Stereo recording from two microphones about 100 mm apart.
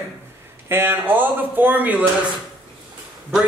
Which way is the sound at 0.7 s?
20° right (ahead or behind).